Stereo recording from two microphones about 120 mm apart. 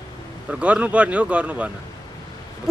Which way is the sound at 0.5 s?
10° right (ahead or behind).